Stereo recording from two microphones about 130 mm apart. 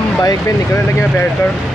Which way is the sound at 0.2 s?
30° left (ahead or behind).